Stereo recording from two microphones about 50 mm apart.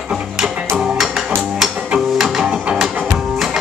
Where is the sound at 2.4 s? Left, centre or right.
Centre.